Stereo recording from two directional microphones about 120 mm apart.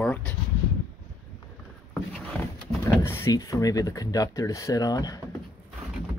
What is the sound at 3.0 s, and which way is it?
Speech, 20° left (ahead or behind).